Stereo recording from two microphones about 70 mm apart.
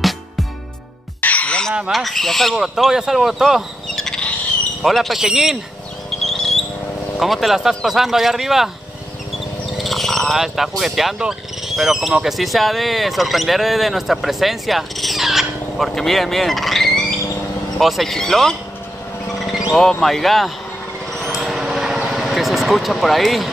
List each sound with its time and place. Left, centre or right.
1.2 s music: left
1.9 s speech: centre
6.0 s a sound: centre
7.2 s speech: centre
9.8 s a sound: centre
10.4 s speech: centre
20.0 s speech: centre
21.1 s a sound: centre
23.0 s speech: centre